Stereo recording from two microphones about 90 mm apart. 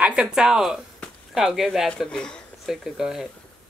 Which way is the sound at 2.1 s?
10° left (ahead or behind).